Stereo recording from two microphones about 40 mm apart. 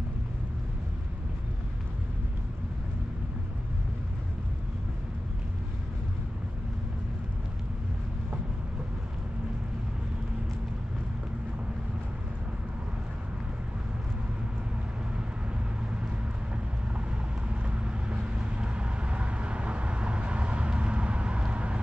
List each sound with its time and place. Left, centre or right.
15.5 s vehicle: right
17.5 s vehicle: right